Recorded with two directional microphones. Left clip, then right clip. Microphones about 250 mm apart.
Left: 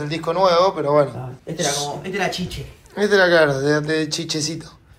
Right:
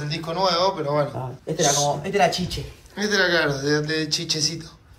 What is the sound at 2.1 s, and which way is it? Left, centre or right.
Speech, right.